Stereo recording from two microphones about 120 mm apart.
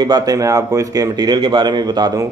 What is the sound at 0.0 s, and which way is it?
Speech, 35° right (ahead or behind).